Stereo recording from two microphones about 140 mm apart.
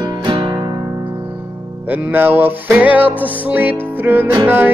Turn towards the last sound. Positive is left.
turn(degrees=-15)  # may be behind; listen again after turning